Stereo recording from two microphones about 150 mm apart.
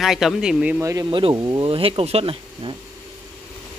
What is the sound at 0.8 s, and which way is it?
Speech, 20° right (ahead or behind).